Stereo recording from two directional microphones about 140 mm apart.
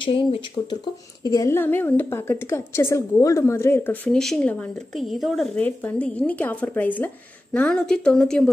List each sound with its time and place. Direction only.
0.0 s speech: 40° left (ahead or behind)
1.2 s a woman's voice: 25° left (ahead or behind); by 8.5 s 5° left (ahead or behind)